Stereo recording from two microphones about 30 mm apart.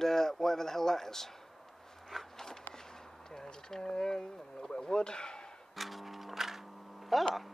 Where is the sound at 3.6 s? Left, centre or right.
Left.